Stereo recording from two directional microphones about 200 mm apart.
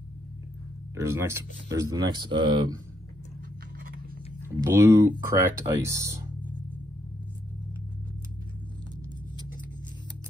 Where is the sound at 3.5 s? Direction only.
50° right (ahead or behind).